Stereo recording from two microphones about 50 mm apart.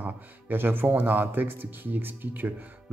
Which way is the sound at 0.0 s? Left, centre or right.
Right.